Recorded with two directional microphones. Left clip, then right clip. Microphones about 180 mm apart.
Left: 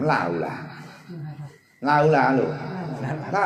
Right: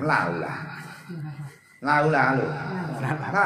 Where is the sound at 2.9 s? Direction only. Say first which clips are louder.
Right 2 dB; 60° right (ahead or behind).